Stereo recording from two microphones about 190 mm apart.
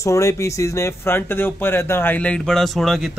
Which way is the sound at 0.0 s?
15° left (ahead or behind).